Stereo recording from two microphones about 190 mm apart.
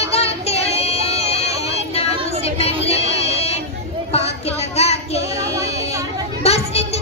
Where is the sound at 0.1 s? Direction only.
30° left (ahead or behind).